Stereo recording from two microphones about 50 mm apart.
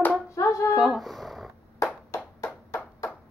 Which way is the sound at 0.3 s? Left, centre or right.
Left.